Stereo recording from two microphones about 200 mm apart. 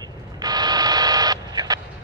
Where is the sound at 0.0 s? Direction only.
20° right (ahead or behind).